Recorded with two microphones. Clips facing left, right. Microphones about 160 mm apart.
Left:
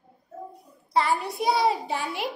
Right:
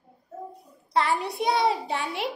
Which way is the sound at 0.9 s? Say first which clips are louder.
Even; centre (ahead or behind).